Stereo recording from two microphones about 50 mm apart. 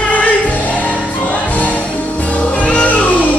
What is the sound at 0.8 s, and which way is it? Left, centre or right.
Music, left.